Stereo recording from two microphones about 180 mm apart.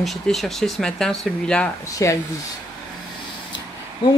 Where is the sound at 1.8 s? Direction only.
20° left (ahead or behind).